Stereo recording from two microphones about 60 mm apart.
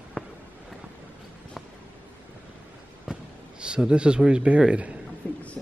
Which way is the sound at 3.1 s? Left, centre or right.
Centre.